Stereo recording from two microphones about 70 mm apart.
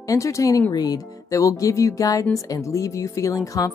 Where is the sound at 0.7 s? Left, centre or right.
Left.